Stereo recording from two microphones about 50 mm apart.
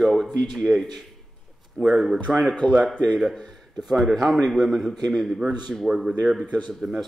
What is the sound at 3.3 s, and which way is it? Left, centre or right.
A man's voice, centre.